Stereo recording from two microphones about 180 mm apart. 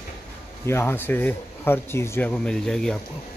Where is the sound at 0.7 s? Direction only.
15° left (ahead or behind).